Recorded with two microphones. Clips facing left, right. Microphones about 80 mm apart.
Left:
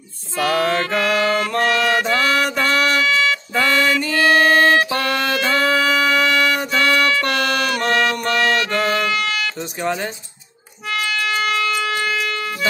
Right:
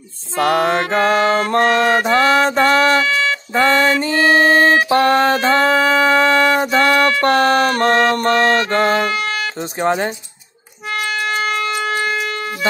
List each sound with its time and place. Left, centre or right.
0.6 s music: right
10.9 s wind instrument: right